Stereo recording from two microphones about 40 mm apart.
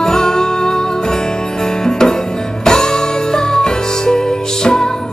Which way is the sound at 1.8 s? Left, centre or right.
Centre.